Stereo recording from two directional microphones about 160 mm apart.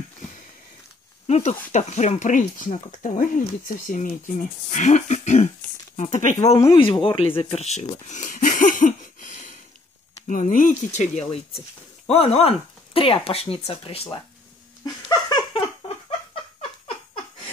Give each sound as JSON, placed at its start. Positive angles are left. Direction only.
{"t": 1.2, "sound": "speech", "side_deg": 40}
{"t": 6.8, "sound": "speech", "side_deg": 35}
{"t": 14.9, "sound": "a sound", "side_deg": 25}